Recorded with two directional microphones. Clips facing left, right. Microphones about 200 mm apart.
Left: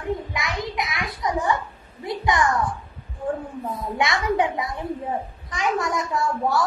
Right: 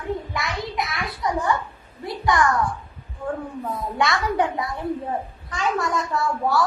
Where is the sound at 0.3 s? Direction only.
15° left (ahead or behind).